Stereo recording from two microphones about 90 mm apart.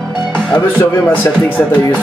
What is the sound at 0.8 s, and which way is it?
Speech, 30° left (ahead or behind).